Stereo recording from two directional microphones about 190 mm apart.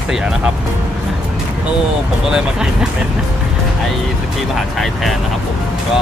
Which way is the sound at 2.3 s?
5° right (ahead or behind).